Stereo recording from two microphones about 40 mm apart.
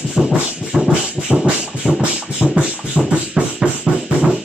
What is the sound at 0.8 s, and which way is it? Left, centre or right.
Beatboxing, right.